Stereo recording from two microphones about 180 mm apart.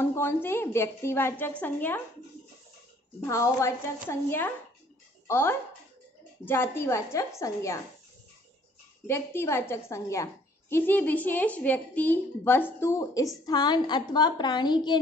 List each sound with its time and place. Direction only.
0.0 s a woman's voice: 15° left (ahead or behind)
3.2 s a woman's voice: 15° left (ahead or behind)
9.0 s a woman's voice: 15° left (ahead or behind)